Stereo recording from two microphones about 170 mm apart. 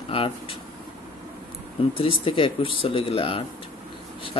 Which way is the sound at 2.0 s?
30° left (ahead or behind).